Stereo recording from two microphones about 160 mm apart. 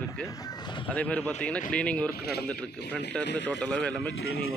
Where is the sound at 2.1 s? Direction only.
80° left.